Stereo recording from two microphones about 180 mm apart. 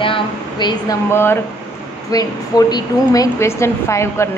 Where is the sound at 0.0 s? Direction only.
25° left (ahead or behind).